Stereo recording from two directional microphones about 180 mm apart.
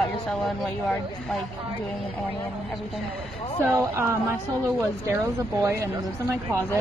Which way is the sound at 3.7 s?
15° right (ahead or behind).